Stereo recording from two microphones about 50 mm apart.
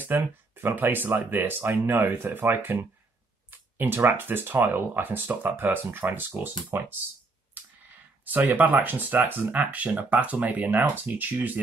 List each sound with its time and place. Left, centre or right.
0.0 s speech: right
8.3 s speech: right